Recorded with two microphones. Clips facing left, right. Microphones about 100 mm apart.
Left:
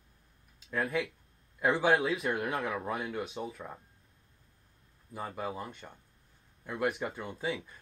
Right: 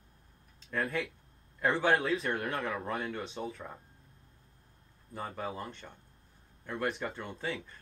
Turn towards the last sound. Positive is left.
turn(degrees=5)  # may be behind; listen again after turning